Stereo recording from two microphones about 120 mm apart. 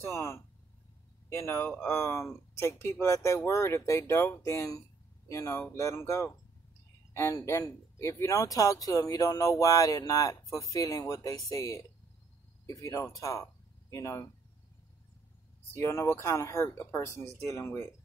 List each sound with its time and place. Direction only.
0.0 s speech: 25° left (ahead or behind)
15.7 s speech: 20° left (ahead or behind)